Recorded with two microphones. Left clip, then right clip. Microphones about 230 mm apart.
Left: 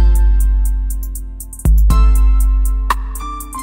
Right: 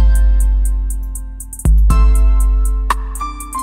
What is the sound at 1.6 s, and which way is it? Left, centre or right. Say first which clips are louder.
Music: even; centre.